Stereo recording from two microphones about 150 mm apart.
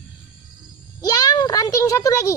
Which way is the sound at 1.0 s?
25° left (ahead or behind).